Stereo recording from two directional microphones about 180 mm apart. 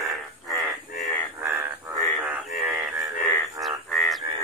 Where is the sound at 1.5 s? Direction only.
10° right (ahead or behind).